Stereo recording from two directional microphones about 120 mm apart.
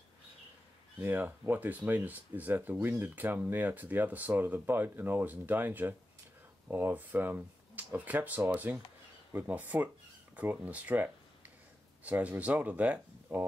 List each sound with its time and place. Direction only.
1.0 s speech: 15° right (ahead or behind)